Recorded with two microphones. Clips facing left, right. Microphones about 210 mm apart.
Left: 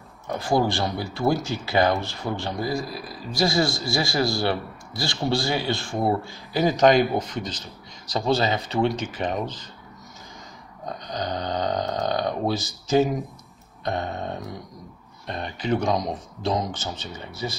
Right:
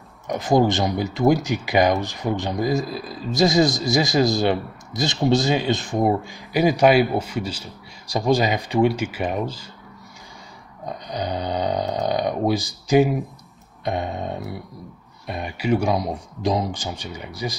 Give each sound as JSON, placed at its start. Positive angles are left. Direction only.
{"t": 0.3, "sound": "speech", "side_deg": -20}
{"t": 10.9, "sound": "speech", "side_deg": -10}